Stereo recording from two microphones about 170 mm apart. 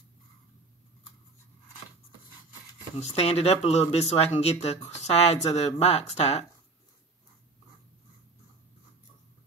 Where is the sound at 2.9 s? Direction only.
35° left (ahead or behind).